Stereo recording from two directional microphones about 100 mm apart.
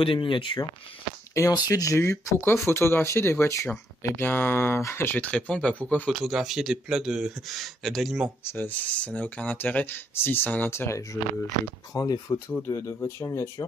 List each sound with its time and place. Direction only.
0.0 s speech: 60° left (ahead or behind)
1.5 s speech: 40° left (ahead or behind); by 6.1 s 15° left (ahead or behind)
6.2 s speech: 5° right (ahead or behind)
8.5 s speech: 20° left (ahead or behind)